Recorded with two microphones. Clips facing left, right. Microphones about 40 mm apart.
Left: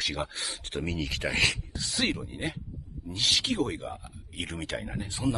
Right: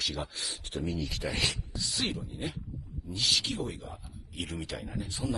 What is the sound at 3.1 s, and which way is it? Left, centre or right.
Speech, left.